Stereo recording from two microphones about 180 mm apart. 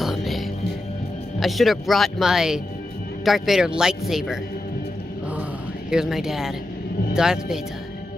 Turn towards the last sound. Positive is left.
turn(degrees=-5)  # may be behind; listen again after turning